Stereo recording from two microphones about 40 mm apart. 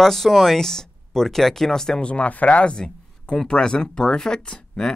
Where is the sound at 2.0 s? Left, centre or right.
Left.